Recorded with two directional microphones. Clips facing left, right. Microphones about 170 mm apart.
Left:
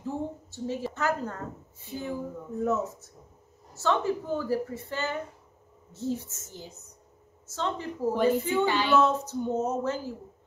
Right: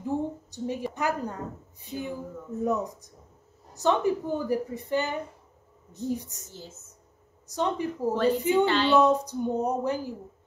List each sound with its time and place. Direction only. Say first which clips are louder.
0.0 s a woman's voice: right 4 dB; 15° right (ahead or behind)
6.5 s speech: left 1 dB; 15° left (ahead or behind)
7.4 s a woman's voice: right 4 dB; 15° right (ahead or behind)
8.6 s speech: right 3 dB; 15° left (ahead or behind)
8.9 s a woman's voice: right 2 dB; 15° right (ahead or behind)